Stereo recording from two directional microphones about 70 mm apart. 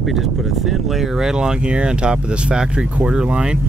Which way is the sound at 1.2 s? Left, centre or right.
Centre.